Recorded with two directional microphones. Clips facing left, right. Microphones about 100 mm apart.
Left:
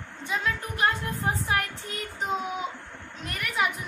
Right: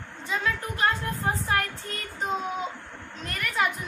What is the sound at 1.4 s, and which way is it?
Speech, 15° left (ahead or behind).